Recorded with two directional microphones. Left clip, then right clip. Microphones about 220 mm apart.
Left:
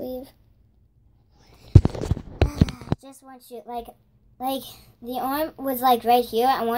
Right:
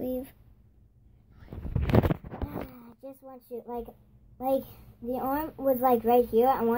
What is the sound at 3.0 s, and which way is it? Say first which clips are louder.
Speech: even; 10° left (ahead or behind).